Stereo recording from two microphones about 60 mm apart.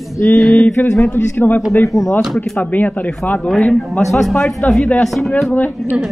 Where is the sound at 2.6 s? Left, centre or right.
Left.